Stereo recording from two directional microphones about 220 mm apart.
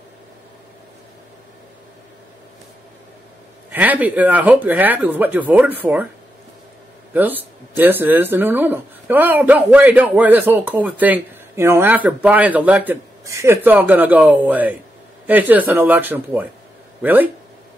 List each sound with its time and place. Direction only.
3.7 s speech: 5° right (ahead or behind)
7.2 s speech: 10° right (ahead or behind)